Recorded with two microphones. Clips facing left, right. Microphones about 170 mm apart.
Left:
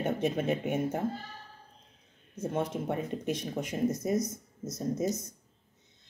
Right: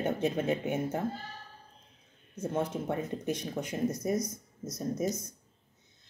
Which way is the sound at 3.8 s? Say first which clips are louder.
Left 2 dB; 20° left (ahead or behind).